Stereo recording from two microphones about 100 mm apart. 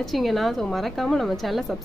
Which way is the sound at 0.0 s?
Centre (ahead or behind).